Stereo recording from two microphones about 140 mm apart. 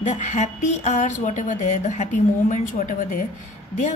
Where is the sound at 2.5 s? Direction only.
70° left (ahead or behind).